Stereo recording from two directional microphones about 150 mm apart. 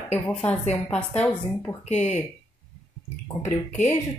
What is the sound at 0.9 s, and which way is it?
Speech, 10° left (ahead or behind).